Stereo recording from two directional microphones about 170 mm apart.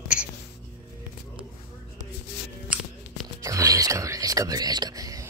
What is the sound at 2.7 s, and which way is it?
Tearing, 5° right (ahead or behind).